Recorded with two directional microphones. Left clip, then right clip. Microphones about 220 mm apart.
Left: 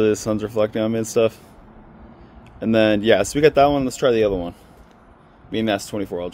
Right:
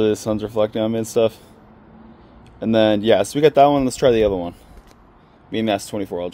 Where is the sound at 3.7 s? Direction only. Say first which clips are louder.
Right 2 dB; 25° right (ahead or behind).